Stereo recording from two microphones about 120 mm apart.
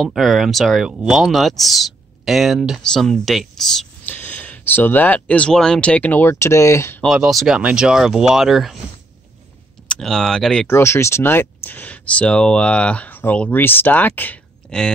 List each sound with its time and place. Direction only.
0.0 s speech: centre (ahead or behind)
4.1 s speech: 15° left (ahead or behind)
7.0 s speech: centre (ahead or behind)
9.8 s speech: 5° left (ahead or behind)
10.7 s speech: 20° left (ahead or behind)